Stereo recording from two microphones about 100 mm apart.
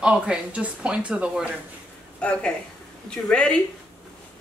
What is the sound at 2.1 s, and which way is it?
Speech, 10° left (ahead or behind).